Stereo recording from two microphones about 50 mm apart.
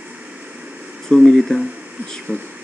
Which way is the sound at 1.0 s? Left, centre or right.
Centre.